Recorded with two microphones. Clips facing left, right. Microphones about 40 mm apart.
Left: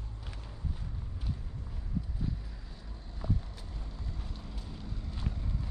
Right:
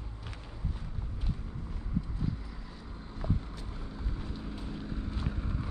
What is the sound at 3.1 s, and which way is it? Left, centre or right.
Vehicle, centre.